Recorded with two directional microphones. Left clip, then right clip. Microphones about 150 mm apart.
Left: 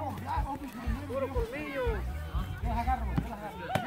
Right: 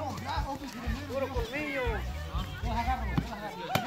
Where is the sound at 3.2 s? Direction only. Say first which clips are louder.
Right 2 dB; 90° right.